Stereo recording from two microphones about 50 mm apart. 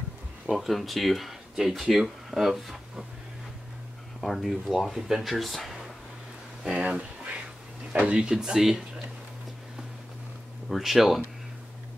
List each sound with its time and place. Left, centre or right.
0.6 s speech: centre
4.2 s speech: centre
6.7 s speech: right
10.7 s speech: centre